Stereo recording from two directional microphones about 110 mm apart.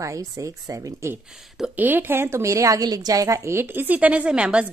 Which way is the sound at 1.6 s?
15° right (ahead or behind).